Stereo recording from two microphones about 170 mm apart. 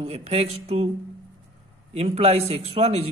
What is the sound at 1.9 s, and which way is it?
Speech, 35° right (ahead or behind).